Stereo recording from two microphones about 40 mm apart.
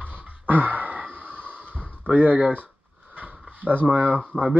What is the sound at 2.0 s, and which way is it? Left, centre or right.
Speech, right.